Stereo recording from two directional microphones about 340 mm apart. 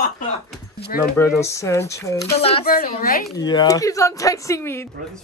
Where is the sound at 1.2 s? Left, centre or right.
Centre.